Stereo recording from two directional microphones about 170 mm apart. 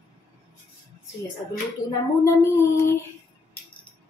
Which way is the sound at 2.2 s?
20° left (ahead or behind).